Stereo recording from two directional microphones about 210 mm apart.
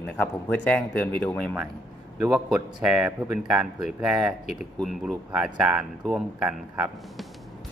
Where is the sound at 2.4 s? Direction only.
5° right (ahead or behind).